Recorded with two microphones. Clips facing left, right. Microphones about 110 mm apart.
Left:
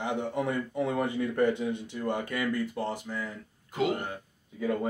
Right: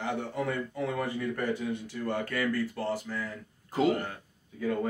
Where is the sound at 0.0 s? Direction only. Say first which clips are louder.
Left 2 dB; 20° left (ahead or behind).